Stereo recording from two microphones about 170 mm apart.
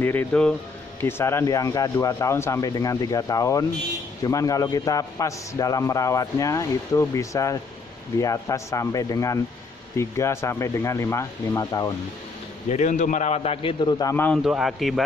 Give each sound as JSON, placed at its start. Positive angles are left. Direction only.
{"t": 0.0, "sound": "a man's voice", "side_deg": 10}
{"t": 12.6, "sound": "a man's voice", "side_deg": 45}
{"t": 14.1, "sound": "speech", "side_deg": 10}
{"t": 14.4, "sound": "a man's voice", "side_deg": -5}